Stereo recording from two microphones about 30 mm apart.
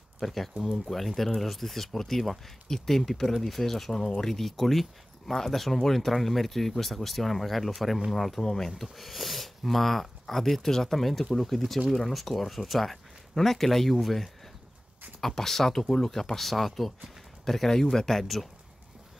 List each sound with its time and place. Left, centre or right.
0.2 s speech: centre
8.4 s speech: centre
8.9 s speech: centre
18.2 s speech: centre